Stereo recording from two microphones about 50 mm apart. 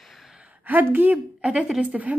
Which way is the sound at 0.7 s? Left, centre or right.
Right.